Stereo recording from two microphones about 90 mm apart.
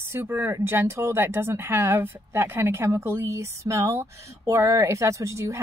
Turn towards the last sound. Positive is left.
turn(degrees=-30)  # may be behind; listen again after turning